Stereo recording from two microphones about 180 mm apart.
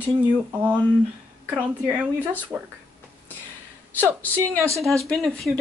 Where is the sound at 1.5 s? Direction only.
10° right (ahead or behind).